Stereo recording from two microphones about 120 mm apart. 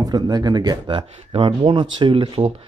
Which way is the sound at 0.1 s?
35° right (ahead or behind).